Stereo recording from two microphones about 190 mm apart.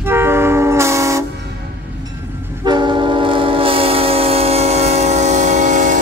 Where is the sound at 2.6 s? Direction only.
25° right (ahead or behind).